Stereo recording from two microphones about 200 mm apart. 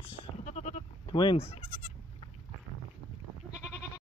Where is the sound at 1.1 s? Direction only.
25° left (ahead or behind).